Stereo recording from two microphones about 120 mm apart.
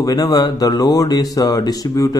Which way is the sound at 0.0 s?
30° left (ahead or behind).